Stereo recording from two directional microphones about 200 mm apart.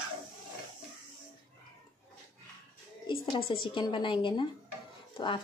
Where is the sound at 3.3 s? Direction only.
25° left (ahead or behind).